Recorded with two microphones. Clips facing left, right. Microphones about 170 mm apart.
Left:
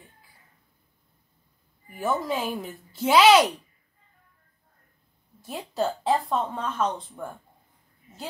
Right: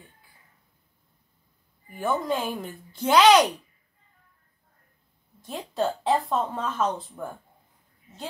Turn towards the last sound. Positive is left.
turn(degrees=0)  # may be behind; listen again after turning